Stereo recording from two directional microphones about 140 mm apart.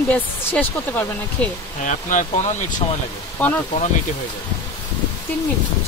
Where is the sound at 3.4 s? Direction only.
10° left (ahead or behind).